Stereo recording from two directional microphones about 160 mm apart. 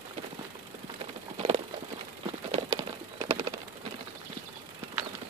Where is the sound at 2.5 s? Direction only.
35° right (ahead or behind).